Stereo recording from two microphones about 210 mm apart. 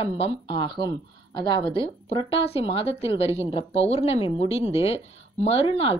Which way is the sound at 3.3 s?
15° right (ahead or behind).